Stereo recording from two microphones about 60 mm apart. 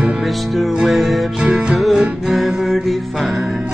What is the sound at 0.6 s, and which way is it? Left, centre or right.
Music, centre.